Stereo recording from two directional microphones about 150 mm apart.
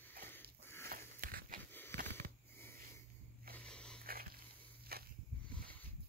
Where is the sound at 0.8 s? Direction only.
80° right.